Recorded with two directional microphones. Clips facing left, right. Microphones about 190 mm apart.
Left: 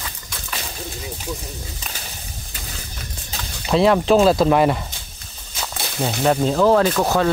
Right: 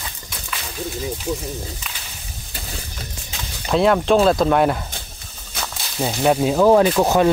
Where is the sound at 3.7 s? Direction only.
Centre (ahead or behind).